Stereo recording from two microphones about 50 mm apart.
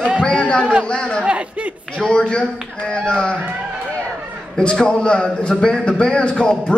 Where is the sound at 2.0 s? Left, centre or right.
Centre.